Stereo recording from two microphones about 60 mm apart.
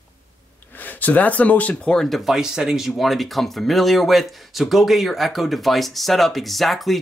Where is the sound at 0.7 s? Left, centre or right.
Left.